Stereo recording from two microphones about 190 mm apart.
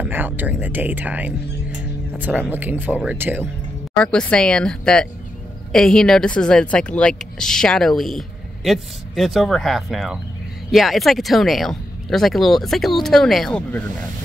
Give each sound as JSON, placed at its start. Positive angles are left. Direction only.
{"t": 0.0, "sound": "speech", "side_deg": -10}
{"t": 4.0, "sound": "speech", "side_deg": 5}